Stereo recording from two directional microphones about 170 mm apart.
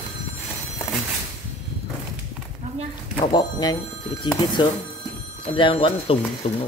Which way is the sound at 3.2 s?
25° left (ahead or behind).